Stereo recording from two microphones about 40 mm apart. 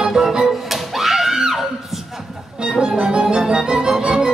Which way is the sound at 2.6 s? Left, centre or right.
Right.